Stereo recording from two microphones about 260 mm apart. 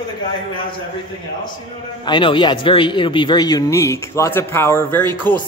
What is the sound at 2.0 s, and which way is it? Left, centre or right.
Speech, centre.